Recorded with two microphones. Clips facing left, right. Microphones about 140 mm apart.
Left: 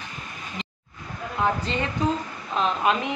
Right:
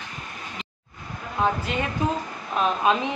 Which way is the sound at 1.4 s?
20° right (ahead or behind).